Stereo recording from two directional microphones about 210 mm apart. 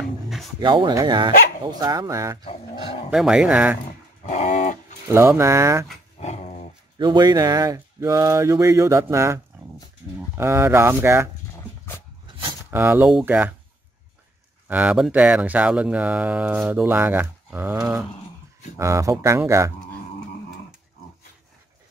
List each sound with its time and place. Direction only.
0.0 s a sound: centre (ahead or behind)
0.6 s speech: 20° right (ahead or behind)
3.1 s speech: 5° right (ahead or behind)
4.3 s dog: 35° left (ahead or behind)
5.1 s speech: 10° right (ahead or behind)
6.1 s dog: 35° left (ahead or behind)
7.0 s speech: 20° right (ahead or behind)
12.7 s speech: 10° right (ahead or behind)
14.7 s speech: 5° right (ahead or behind)
18.8 s speech: 15° right (ahead or behind)